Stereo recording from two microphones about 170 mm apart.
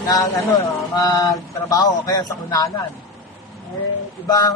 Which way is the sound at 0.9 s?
20° left (ahead or behind).